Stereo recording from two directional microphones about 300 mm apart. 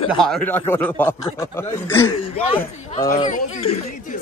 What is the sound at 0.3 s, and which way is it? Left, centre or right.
Speech, centre.